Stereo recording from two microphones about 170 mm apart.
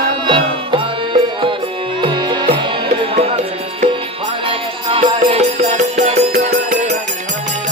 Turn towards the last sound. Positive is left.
turn(degrees=-45)  # may be behind; listen again after turning